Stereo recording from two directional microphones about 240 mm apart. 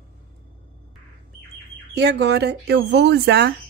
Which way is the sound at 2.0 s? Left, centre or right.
Right.